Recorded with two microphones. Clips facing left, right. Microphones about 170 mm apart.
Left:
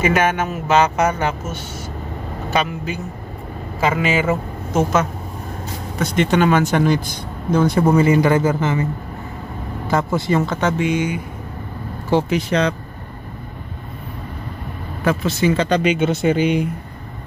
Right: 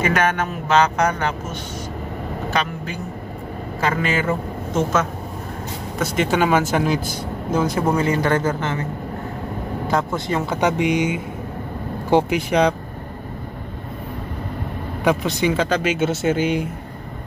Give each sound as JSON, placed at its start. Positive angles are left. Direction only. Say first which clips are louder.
{"t": 0.0, "sound": "speech", "louder": "left 2 dB", "side_deg": 5}
{"t": 5.9, "sound": "speech", "louder": "left 2 dB", "side_deg": -5}
{"t": 9.8, "sound": "speech", "louder": "left 3 dB", "side_deg": 5}
{"t": 10.4, "sound": "speech", "louder": "even", "side_deg": -15}
{"t": 15.0, "sound": "speech", "louder": "left 1 dB", "side_deg": -15}